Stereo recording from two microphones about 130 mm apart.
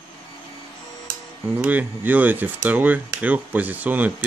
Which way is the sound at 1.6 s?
15° right (ahead or behind).